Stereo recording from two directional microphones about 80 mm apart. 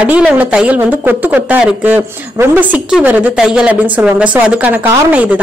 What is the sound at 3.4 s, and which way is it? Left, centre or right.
Speech, centre.